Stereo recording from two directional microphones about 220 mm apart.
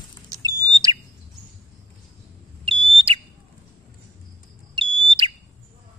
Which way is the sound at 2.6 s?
25° right (ahead or behind).